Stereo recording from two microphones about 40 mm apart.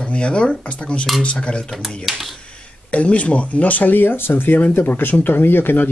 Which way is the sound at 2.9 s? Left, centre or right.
Left.